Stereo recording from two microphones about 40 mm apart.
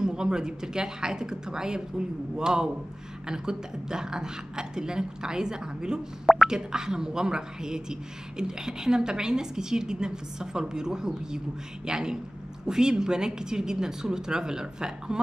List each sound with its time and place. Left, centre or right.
0.0 s speech: centre